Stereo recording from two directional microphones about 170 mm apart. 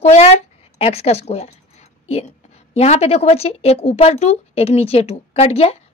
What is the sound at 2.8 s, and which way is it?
Speech, 35° left (ahead or behind).